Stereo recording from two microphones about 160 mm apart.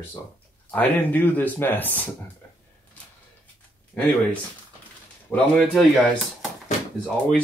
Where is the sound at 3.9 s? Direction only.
10° left (ahead or behind).